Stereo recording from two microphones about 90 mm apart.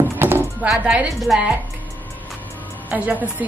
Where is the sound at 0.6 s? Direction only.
10° right (ahead or behind).